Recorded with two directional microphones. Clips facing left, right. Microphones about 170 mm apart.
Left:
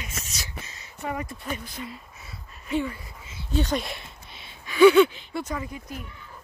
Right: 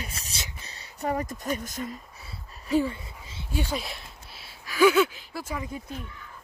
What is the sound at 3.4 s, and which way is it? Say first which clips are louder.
Speech: left 4 dB; 10° right (ahead or behind).